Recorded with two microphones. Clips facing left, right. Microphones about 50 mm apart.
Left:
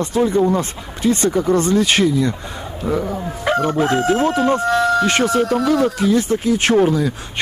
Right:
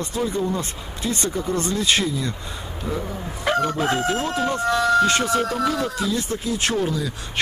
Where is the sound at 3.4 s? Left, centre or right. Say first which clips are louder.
Left 4 dB; centre.